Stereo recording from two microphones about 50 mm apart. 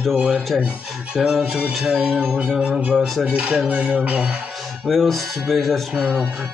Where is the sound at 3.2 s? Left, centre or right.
Right.